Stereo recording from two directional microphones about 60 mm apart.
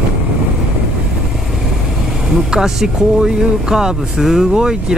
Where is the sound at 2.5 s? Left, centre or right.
Centre.